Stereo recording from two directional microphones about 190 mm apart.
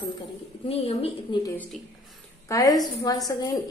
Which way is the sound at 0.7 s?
30° left (ahead or behind).